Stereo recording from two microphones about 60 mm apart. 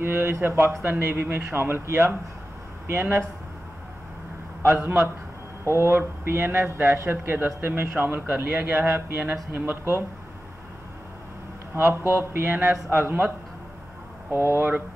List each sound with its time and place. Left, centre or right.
0.0 s speech: right
4.6 s speech: right
11.7 s speech: right
14.3 s speech: right